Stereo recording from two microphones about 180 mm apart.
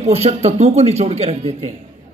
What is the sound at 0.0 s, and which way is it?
Speech, 35° right (ahead or behind).